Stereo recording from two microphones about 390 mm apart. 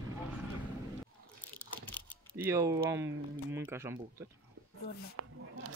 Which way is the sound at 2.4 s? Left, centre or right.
Centre.